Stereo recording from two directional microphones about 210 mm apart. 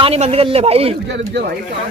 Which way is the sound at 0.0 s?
30° right (ahead or behind).